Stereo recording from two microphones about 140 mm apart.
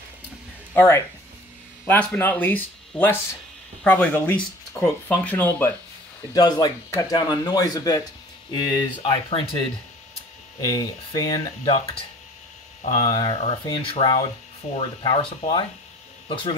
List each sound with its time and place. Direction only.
0.7 s speech: 20° left (ahead or behind)
6.3 s speech: 30° left (ahead or behind)
10.7 s speech: 30° left (ahead or behind)
13.0 s speech: 35° left (ahead or behind)